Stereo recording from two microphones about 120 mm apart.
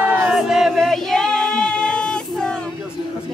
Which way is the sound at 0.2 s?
5° right (ahead or behind).